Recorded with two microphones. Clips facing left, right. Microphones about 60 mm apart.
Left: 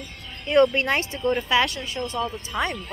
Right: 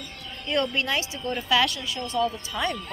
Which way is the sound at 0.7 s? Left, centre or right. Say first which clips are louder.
Left 3 dB; left.